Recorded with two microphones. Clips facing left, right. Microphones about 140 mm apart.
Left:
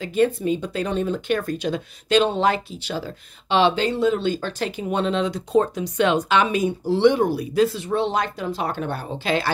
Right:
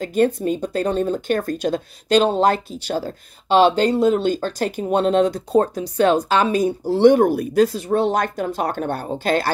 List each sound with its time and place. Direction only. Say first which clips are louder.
0.0 s speech: right 2 dB; 45° right (ahead or behind)